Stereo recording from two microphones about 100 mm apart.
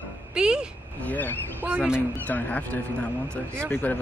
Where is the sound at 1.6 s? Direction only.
10° right (ahead or behind).